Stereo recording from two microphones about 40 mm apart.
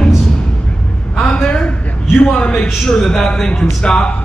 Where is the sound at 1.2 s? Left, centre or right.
Left.